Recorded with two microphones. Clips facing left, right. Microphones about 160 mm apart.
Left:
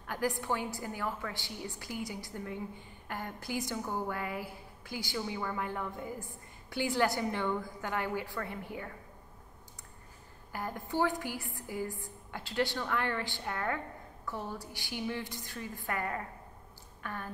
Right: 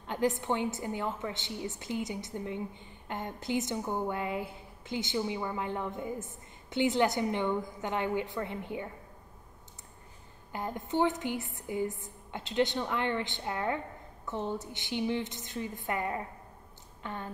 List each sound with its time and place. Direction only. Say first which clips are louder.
0.0 s a woman's voice: right 4 dB; 20° right (ahead or behind)
10.5 s a woman's voice: right 3 dB; 20° right (ahead or behind)